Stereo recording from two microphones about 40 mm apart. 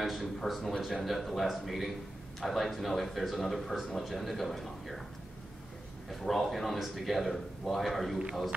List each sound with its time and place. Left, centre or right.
0.0 s speech: centre
6.0 s speech: centre